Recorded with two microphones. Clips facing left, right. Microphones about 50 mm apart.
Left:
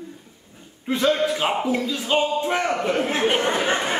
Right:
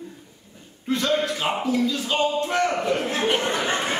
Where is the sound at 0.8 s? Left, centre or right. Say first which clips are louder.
Left 2 dB; centre.